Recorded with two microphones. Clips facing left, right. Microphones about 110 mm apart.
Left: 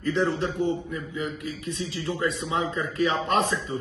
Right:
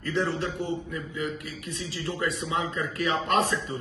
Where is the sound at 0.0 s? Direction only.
25° left (ahead or behind).